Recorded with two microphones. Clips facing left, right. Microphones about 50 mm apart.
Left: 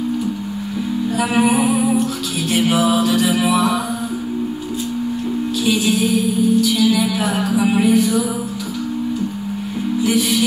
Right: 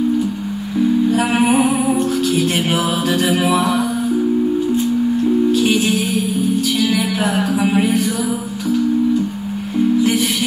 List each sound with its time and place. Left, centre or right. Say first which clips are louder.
1.1 s music: right 2 dB; right
2.7 s music: left 2 dB; right
5.7 s music: even; right